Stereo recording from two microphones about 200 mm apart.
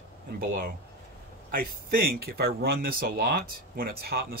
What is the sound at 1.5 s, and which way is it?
Speech, 45° right (ahead or behind).